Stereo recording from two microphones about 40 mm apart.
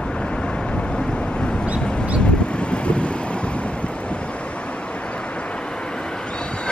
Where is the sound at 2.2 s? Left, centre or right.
Left.